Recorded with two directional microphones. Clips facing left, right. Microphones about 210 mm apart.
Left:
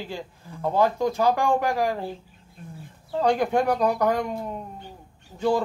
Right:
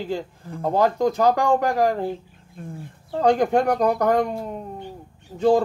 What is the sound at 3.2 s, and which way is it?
A man's voice, 45° right (ahead or behind).